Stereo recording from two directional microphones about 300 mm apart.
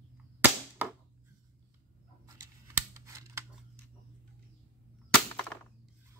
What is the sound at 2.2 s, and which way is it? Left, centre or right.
Scissors, centre.